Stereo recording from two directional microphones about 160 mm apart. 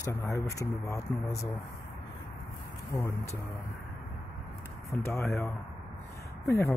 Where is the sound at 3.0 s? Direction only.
20° left (ahead or behind).